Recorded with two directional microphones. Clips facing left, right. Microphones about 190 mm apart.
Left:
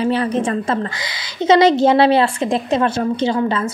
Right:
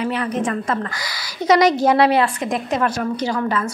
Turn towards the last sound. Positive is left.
turn(degrees=30)  # may be behind; listen again after turning